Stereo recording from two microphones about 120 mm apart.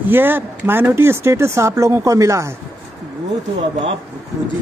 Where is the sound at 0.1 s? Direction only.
15° right (ahead or behind).